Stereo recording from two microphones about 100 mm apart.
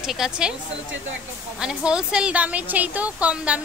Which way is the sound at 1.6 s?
10° right (ahead or behind).